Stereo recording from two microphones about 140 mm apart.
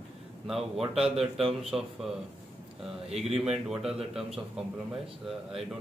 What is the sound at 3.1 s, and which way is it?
Speech, 45° right (ahead or behind).